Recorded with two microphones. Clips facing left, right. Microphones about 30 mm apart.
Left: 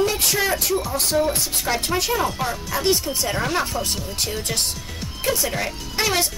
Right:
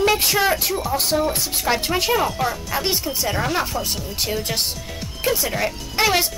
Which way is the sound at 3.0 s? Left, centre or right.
Centre.